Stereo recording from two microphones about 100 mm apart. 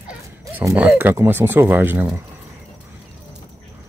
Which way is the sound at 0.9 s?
25° right (ahead or behind).